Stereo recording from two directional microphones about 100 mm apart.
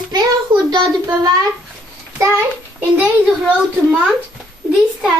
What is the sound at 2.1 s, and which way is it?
Speech, 30° right (ahead or behind).